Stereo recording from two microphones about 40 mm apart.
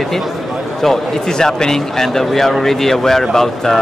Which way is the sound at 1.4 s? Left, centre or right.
Centre.